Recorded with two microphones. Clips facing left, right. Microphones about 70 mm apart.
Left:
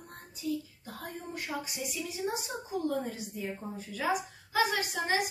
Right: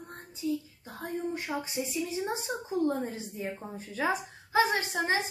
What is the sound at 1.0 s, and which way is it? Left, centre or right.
A woman's voice, right.